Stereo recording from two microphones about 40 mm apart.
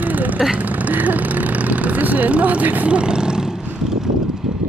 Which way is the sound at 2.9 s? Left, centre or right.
Right.